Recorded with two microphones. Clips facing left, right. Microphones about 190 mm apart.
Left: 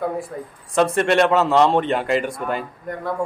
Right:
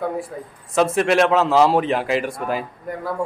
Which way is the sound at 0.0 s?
Centre (ahead or behind).